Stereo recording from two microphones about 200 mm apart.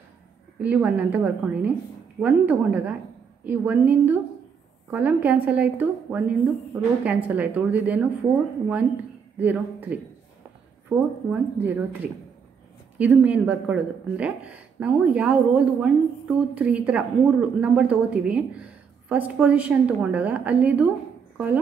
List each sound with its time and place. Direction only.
0.6 s speech: 5° right (ahead or behind)
9.4 s speech: 10° right (ahead or behind)
11.2 s speech: 10° right (ahead or behind)